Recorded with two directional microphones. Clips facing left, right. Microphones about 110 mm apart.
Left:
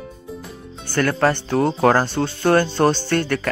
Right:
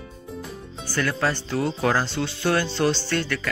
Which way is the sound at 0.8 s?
55° left (ahead or behind).